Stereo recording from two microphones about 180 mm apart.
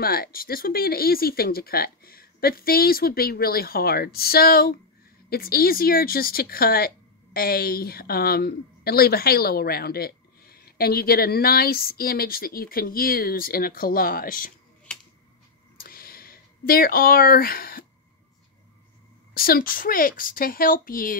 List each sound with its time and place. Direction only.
0.0 s a woman's voice: 55° left (ahead or behind)
15.8 s a sound: 55° left (ahead or behind)
19.3 s a woman's voice: 55° left (ahead or behind)